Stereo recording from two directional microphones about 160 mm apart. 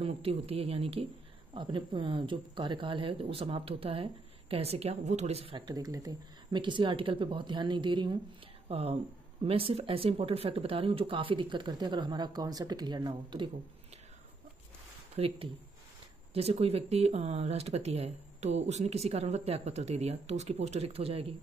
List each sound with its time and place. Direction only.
0.0 s speech: 35° right (ahead or behind)
5.7 s speech: 20° right (ahead or behind)
8.6 s speech: 40° right (ahead or behind)
15.1 s speech: 35° right (ahead or behind)